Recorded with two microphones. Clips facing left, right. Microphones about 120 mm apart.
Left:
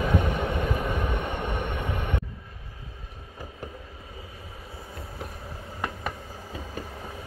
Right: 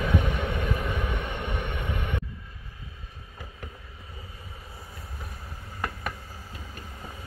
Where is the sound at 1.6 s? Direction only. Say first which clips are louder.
Left 2 dB; 45° left (ahead or behind).